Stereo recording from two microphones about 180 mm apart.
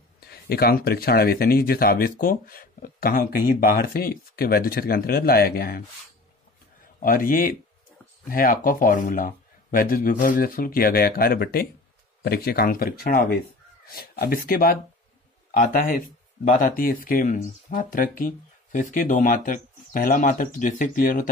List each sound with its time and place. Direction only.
0.3 s speech: 60° left (ahead or behind)
7.0 s speech: 50° left (ahead or behind)